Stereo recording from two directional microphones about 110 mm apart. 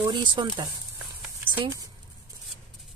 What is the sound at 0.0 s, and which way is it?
Speech, 45° right (ahead or behind).